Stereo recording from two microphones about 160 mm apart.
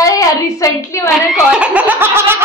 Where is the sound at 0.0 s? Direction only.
20° left (ahead or behind).